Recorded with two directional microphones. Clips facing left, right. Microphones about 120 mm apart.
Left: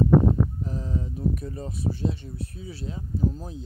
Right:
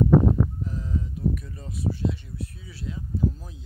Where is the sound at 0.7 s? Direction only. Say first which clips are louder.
Left 1 dB; 35° left (ahead or behind).